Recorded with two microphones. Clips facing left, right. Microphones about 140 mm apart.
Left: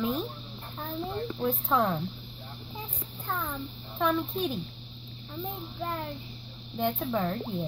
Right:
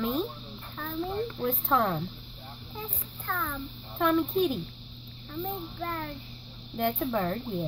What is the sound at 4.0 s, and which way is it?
Speech, centre (ahead or behind).